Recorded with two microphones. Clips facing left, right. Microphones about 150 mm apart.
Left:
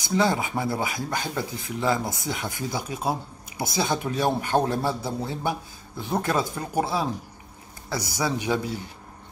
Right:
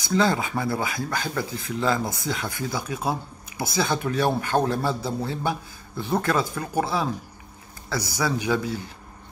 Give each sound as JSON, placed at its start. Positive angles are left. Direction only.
{"t": 0.0, "sound": "speech", "side_deg": 15}